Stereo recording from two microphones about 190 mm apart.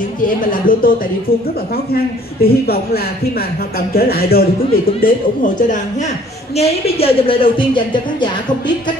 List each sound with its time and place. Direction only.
0.5 s speech: 50° left (ahead or behind)
2.4 s speech: 55° left (ahead or behind)
6.5 s a woman's voice: 30° left (ahead or behind)